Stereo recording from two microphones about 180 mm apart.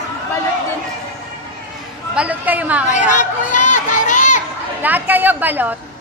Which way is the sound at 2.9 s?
45° left (ahead or behind).